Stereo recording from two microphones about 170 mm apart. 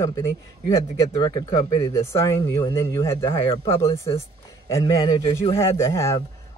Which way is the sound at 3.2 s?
30° left (ahead or behind).